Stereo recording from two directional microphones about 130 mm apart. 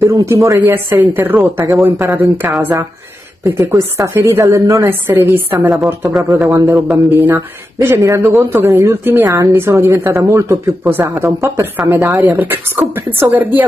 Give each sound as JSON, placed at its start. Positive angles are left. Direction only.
{"t": 0.0, "sound": "speech", "side_deg": -25}
{"t": 2.4, "sound": "speech", "side_deg": -10}